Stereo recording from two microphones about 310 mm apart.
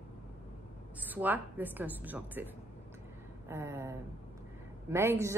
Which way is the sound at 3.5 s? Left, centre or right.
Centre.